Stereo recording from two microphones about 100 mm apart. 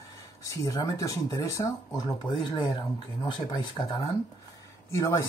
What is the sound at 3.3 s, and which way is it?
Speech, 50° left (ahead or behind).